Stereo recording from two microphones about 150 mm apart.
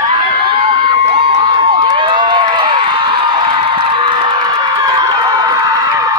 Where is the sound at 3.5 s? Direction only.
35° right (ahead or behind).